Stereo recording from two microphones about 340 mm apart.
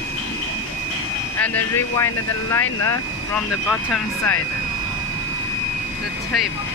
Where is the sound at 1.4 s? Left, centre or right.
Centre.